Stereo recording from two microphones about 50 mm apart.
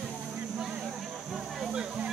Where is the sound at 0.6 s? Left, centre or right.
Centre.